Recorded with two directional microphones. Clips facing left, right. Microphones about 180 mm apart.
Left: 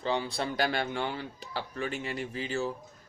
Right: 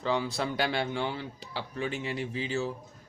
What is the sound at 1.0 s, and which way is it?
Speech, 50° left (ahead or behind).